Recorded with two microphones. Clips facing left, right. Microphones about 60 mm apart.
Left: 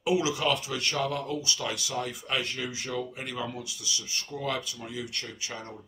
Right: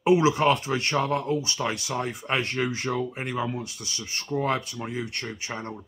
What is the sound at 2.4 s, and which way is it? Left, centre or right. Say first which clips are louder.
Speech: right 7 dB; right.